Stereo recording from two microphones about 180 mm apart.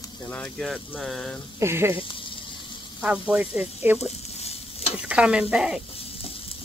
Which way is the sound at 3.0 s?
10° right (ahead or behind).